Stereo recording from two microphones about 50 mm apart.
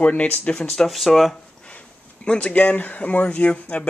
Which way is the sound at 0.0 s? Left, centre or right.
Left.